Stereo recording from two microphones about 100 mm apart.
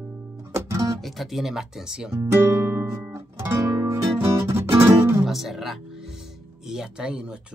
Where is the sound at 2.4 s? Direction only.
25° right (ahead or behind).